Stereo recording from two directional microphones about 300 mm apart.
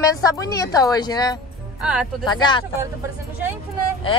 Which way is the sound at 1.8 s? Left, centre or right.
Centre.